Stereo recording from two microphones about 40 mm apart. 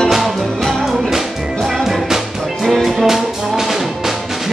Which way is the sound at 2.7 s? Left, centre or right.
Centre.